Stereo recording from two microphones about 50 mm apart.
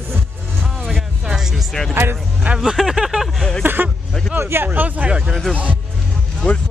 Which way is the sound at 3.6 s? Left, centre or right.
Right.